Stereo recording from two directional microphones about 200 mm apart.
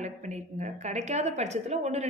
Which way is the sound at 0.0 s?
35° right (ahead or behind).